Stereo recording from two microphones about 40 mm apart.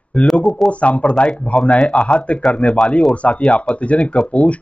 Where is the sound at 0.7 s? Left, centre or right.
Left.